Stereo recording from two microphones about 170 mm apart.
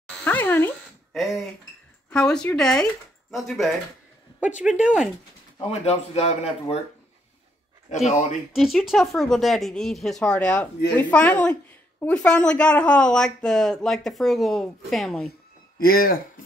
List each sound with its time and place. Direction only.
0.2 s a sound: 10° left (ahead or behind)
1.1 s speech: centre (ahead or behind)
5.7 s speech: 40° left (ahead or behind)
7.9 s speech: 40° left (ahead or behind)
8.5 s speech: centre (ahead or behind)
15.8 s speech: 60° left (ahead or behind)